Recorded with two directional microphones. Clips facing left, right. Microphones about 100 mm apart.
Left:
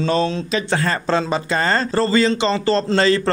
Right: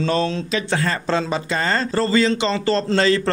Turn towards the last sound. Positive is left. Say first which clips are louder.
# left 1 dB
turn(degrees=35)  # may be behind; listen again after turning